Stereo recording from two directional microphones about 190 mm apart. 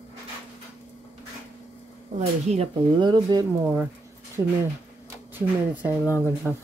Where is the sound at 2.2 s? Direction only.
35° right (ahead or behind).